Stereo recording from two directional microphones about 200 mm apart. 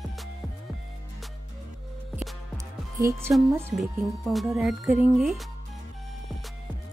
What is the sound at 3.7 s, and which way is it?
Speech, centre (ahead or behind).